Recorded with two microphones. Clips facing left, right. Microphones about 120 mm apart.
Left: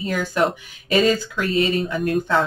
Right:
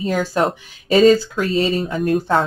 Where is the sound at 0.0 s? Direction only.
35° right (ahead or behind).